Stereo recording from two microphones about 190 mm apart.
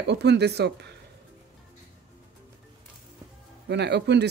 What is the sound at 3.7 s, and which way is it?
Speech, 60° right (ahead or behind).